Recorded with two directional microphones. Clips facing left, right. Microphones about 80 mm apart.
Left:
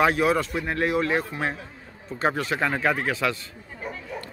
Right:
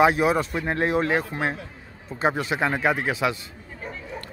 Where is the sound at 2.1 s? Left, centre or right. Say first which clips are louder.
Right 1 dB; centre.